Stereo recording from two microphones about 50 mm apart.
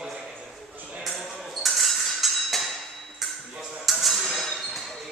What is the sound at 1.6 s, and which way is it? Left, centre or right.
Music, centre.